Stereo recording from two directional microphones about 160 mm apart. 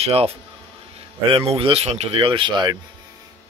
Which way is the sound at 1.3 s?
35° right (ahead or behind).